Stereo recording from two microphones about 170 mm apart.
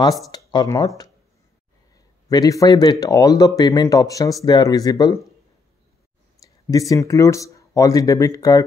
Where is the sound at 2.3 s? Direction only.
20° left (ahead or behind).